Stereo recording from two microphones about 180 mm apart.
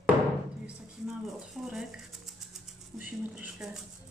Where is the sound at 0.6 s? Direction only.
5° right (ahead or behind).